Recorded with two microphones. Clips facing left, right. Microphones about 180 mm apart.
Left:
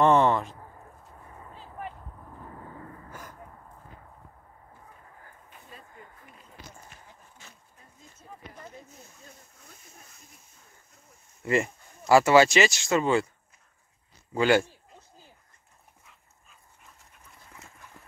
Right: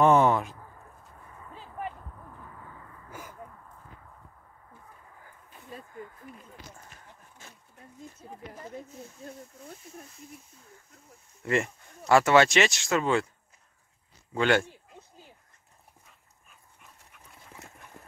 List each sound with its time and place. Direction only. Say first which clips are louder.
0.0 s a sound: even; 5° right (ahead or behind)
2.5 s vehicle: left 5 dB; 35° left (ahead or behind)
3.1 s gasp: even; 5° right (ahead or behind)
11.4 s speech: left 2 dB; centre (ahead or behind)
14.3 s speech: left 2 dB; 5° left (ahead or behind)